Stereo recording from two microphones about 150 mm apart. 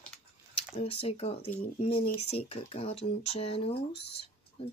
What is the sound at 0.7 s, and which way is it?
Speech, 40° left (ahead or behind).